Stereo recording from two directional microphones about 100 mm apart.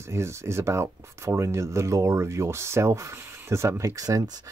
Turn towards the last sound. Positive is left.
turn(degrees=-35)  # may be behind; listen again after turning